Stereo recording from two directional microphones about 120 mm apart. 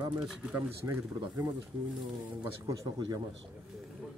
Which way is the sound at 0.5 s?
20° right (ahead or behind).